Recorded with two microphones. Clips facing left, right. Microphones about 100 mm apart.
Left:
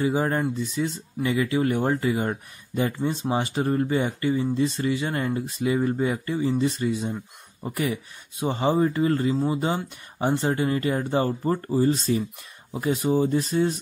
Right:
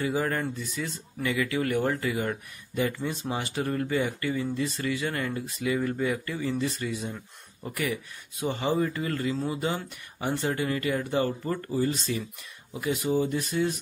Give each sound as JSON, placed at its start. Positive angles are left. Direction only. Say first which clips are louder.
{"t": 0.0, "sound": "speech", "louder": "left 4 dB", "side_deg": 25}